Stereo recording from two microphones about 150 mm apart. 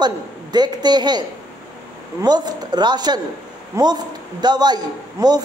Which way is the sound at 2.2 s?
25° right (ahead or behind).